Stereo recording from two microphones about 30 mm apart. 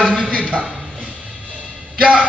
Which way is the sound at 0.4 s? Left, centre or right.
Right.